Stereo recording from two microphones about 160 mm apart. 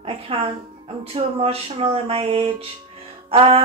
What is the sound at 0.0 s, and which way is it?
Speech, 35° right (ahead or behind).